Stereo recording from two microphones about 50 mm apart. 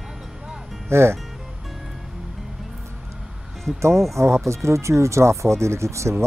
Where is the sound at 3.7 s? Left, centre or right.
Right.